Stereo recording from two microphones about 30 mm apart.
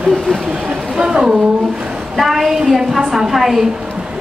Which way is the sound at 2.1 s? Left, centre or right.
Centre.